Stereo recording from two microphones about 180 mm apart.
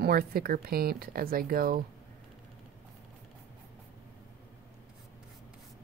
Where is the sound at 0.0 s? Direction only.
55° right (ahead or behind).